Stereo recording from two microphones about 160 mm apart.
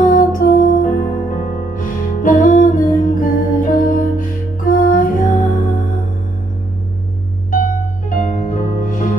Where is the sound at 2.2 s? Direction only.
60° left (ahead or behind).